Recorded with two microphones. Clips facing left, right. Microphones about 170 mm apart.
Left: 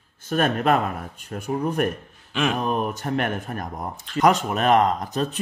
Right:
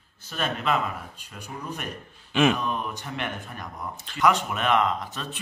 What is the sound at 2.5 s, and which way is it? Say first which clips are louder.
Speech: left 5 dB; 50° left (ahead or behind).